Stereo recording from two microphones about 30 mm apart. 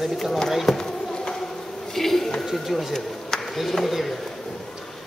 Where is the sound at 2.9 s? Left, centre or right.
Centre.